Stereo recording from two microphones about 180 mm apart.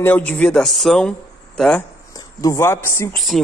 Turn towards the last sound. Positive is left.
turn(degrees=0)  # may be behind; listen again after turning